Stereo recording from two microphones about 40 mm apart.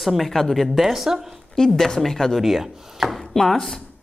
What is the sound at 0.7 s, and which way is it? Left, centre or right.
Speech, centre.